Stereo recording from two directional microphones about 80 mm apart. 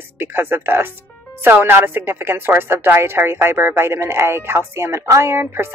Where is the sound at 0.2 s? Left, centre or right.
Right.